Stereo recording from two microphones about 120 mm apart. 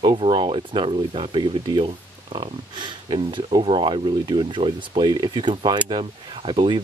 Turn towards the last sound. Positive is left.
turn(degrees=-45)  # may be behind; listen again after turning